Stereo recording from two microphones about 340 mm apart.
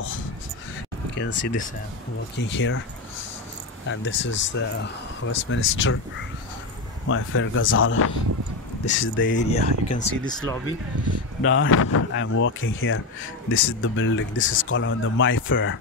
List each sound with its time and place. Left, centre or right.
1.1 s speech: left
3.8 s speech: left
7.1 s speech: left
9.5 s speech: centre
11.4 s speech: left